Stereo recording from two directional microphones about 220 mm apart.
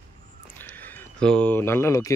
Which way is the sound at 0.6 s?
10° left (ahead or behind).